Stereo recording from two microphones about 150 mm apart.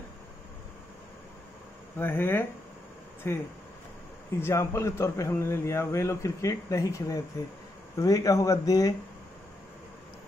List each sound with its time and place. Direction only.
2.0 s a man's voice: 15° left (ahead or behind)